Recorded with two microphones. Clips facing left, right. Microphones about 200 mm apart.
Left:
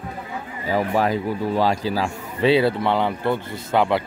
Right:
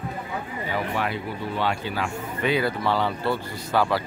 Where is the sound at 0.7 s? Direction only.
40° left (ahead or behind).